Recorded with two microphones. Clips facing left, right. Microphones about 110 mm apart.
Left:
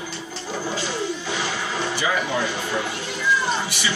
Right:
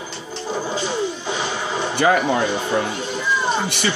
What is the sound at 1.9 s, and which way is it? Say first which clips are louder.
Speech: right 9 dB; 55° right (ahead or behind).